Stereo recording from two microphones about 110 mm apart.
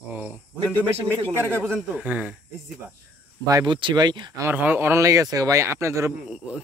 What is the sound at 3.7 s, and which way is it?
Speech, 45° right (ahead or behind).